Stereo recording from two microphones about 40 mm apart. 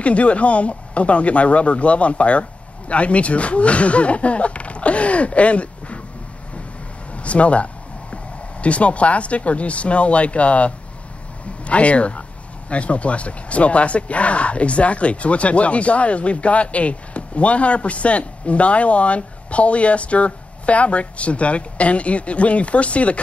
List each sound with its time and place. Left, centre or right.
0.0 s speech: left
7.2 s speech: left